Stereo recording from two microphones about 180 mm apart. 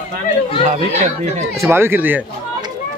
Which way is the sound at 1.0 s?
40° right (ahead or behind).